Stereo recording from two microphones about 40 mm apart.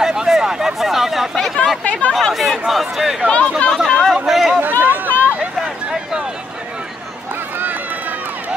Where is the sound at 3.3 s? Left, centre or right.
Left.